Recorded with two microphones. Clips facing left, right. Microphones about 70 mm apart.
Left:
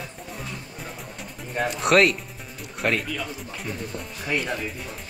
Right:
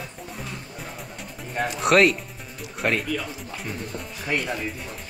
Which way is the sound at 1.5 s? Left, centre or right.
Centre.